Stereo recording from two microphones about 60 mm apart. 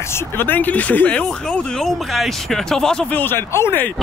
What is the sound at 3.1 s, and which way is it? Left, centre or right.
Speech, left.